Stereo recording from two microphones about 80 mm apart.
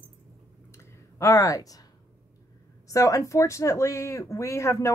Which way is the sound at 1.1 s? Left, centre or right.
Left.